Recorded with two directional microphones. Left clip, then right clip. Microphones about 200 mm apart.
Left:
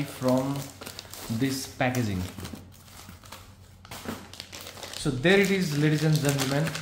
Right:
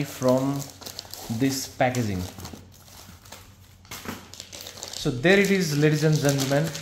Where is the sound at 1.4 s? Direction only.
35° right (ahead or behind).